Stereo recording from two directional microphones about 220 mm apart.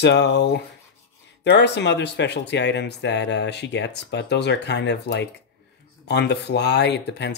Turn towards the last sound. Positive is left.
turn(degrees=50)  # may be behind; listen again after turning